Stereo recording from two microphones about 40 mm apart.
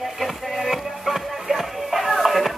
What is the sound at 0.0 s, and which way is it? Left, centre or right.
Music, centre.